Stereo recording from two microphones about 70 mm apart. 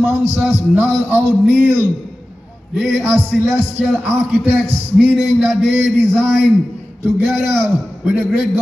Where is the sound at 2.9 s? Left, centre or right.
Right.